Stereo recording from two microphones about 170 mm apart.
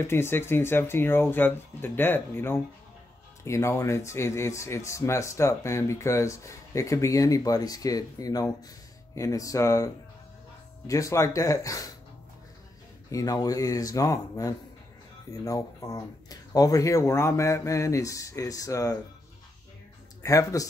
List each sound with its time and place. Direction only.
0.0 s speech: 15° left (ahead or behind)
10.9 s speech: 20° left (ahead or behind)
13.1 s speech: 20° left (ahead or behind)
20.2 s speech: 20° left (ahead or behind)